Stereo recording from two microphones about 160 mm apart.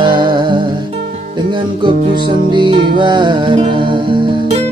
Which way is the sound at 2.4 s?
30° right (ahead or behind).